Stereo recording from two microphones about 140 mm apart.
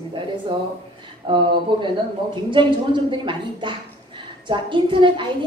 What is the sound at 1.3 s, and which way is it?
Speech, 35° right (ahead or behind).